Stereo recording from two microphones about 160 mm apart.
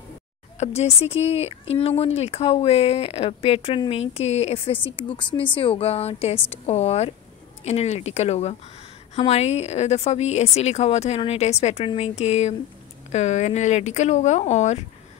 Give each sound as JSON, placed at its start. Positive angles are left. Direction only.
{"t": 0.6, "sound": "a woman's voice", "side_deg": 40}
{"t": 4.8, "sound": "a woman's voice", "side_deg": 30}